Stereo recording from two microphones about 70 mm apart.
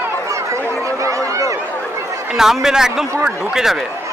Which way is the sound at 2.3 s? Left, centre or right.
Centre.